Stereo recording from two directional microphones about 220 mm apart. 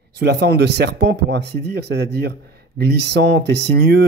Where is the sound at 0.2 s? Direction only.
50° right (ahead or behind).